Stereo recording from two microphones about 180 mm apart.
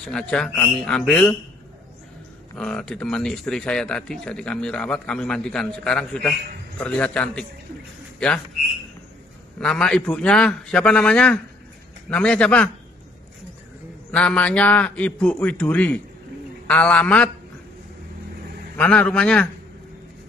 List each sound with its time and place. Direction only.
0.0 s speech: 5° left (ahead or behind)
2.5 s a man's voice: 5° left (ahead or behind)
9.6 s a man's voice: 5° left (ahead or behind)
14.1 s a man's voice: 5° left (ahead or behind)
18.8 s a man's voice: 5° left (ahead or behind)